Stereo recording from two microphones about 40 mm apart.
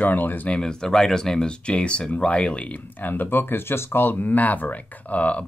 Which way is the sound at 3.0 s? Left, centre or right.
Left.